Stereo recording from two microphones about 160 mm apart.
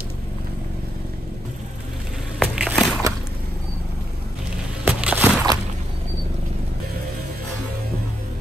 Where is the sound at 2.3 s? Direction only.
Centre (ahead or behind).